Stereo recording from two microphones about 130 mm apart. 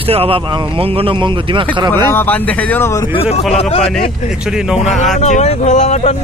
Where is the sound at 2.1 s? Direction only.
15° left (ahead or behind).